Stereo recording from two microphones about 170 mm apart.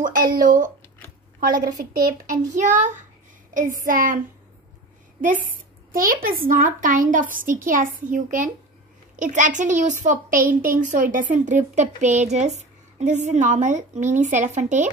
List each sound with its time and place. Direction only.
0.3 s a woman's voice: 55° right (ahead or behind)
5.2 s a woman's voice: 50° right (ahead or behind)